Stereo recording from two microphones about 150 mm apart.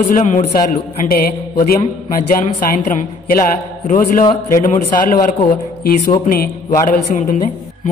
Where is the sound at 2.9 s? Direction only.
70° left (ahead or behind).